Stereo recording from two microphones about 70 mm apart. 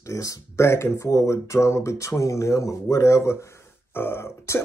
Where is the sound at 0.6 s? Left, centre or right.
Left.